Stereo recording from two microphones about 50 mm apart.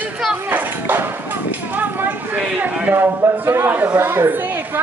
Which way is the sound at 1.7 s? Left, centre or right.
Right.